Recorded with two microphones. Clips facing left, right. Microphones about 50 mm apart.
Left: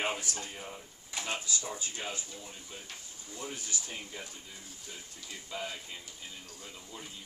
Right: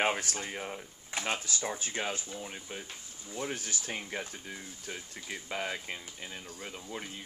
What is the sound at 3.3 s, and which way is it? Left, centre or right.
Speech, right.